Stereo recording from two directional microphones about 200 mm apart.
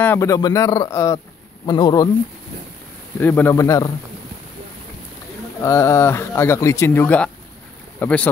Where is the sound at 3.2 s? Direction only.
10° left (ahead or behind).